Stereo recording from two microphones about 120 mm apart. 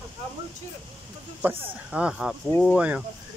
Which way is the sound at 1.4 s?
15° right (ahead or behind).